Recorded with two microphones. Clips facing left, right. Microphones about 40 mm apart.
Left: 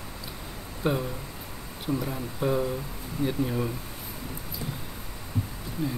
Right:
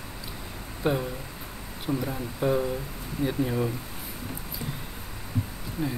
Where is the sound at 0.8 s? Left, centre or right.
Centre.